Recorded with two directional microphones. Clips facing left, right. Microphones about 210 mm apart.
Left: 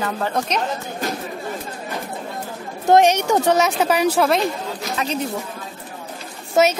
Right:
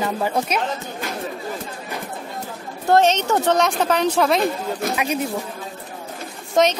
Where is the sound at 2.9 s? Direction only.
15° left (ahead or behind).